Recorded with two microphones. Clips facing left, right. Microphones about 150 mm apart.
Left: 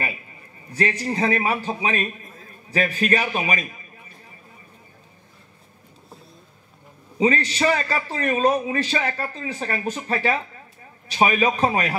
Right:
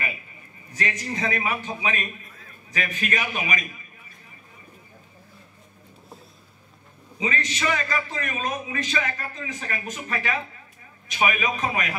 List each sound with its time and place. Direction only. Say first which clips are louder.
0.7 s a man's voice: left 6 dB; 30° left (ahead or behind)
7.2 s a man's voice: left 8 dB; 35° left (ahead or behind)